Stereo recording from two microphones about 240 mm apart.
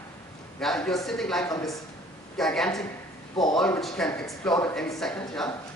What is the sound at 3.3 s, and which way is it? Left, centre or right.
Speech, centre.